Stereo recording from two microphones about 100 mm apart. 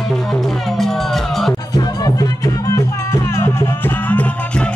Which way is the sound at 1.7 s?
35° left (ahead or behind).